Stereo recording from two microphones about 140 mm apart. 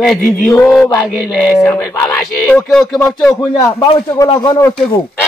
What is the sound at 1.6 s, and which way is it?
Speech, 10° left (ahead or behind).